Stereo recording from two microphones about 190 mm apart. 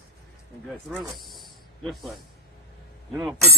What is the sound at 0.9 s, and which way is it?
Snake, centre (ahead or behind).